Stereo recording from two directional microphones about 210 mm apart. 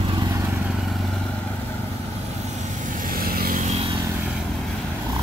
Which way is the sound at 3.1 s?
45° right (ahead or behind).